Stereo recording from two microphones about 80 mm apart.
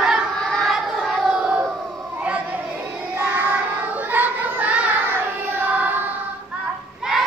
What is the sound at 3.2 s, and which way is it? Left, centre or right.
Child singing, right.